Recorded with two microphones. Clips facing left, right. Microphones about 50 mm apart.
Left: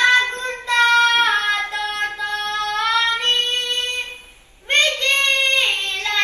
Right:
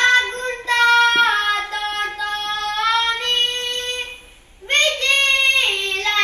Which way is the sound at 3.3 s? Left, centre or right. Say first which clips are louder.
Even; right.